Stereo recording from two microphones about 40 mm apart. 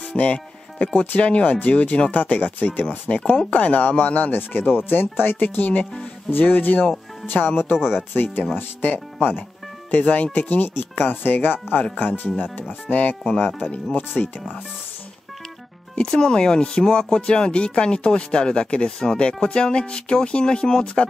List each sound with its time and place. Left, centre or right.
0.1 s music: left
0.9 s speech: left
3.1 s speech: left
4.3 s speech: left
7.2 s speech: left
9.8 s speech: left
16.0 s speech: left